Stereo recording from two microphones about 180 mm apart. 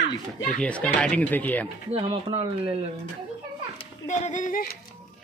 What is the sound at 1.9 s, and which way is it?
Speech, 30° right (ahead or behind).